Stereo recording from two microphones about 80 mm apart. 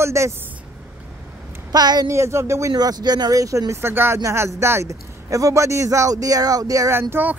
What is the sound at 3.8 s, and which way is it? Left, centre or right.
Speech, right.